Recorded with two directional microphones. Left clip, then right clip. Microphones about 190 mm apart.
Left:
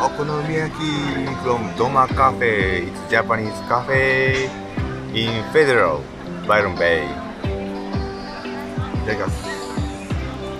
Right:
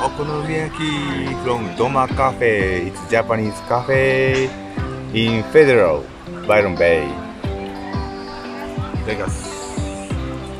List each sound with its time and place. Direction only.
0.0 s speech: 5° right (ahead or behind)
2.0 s speech: 15° right (ahead or behind)
9.0 s speech: centre (ahead or behind)